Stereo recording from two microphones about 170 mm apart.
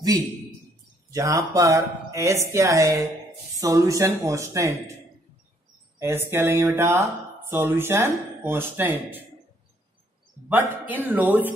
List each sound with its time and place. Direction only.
1.1 s speech: 20° right (ahead or behind)
5.9 s speech: 15° right (ahead or behind)
10.5 s speech: 10° right (ahead or behind)